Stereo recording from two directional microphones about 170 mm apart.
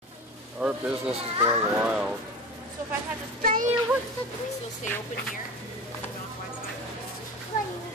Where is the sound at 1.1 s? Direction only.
30° right (ahead or behind).